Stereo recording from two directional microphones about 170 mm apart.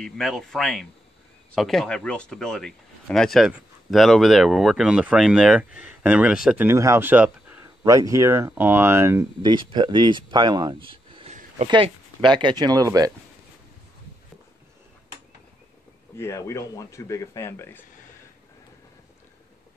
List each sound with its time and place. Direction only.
0.0 s speech: centre (ahead or behind)
7.8 s speech: 20° right (ahead or behind)
9.5 s speech: 25° right (ahead or behind)
16.2 s speech: 15° left (ahead or behind)